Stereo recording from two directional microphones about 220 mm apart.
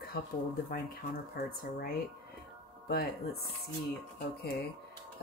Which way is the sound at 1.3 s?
45° left (ahead or behind).